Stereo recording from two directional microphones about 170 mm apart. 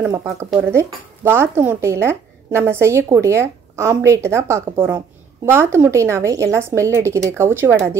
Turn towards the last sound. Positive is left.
turn(degrees=-15)  # may be behind; listen again after turning